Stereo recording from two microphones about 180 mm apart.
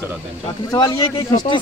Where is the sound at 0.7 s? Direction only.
20° left (ahead or behind).